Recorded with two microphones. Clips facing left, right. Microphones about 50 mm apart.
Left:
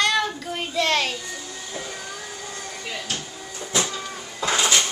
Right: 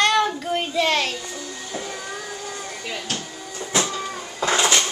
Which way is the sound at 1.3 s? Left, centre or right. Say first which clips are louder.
Right 2 dB; centre.